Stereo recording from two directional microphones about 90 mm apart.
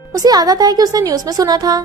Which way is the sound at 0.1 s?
45° right (ahead or behind).